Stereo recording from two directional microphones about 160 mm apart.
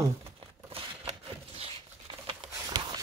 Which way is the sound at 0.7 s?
40° right (ahead or behind).